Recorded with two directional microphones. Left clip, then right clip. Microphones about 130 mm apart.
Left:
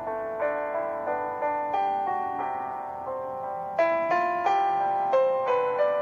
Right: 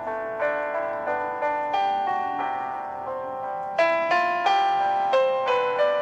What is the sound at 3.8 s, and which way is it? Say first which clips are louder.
Music: right 3 dB; 25° right (ahead or behind).